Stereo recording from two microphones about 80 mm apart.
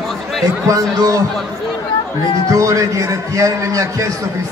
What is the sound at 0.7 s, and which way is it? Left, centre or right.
Speech, right.